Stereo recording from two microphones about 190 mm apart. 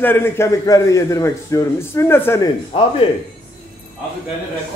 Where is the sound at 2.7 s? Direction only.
30° left (ahead or behind).